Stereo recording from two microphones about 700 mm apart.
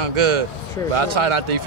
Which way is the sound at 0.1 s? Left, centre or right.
Right.